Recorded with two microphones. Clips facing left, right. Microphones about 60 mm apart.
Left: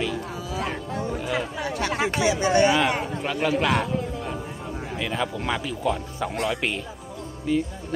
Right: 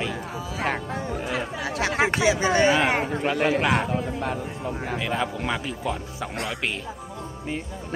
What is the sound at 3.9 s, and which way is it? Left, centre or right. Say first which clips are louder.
Speech: right 2 dB; right.